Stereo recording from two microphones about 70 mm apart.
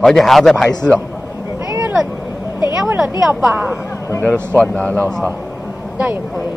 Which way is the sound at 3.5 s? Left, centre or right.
Right.